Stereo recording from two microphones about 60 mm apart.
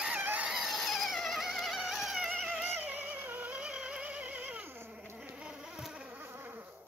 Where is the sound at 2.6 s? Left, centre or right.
Right.